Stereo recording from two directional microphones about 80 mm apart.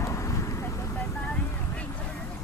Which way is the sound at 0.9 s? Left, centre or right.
Left.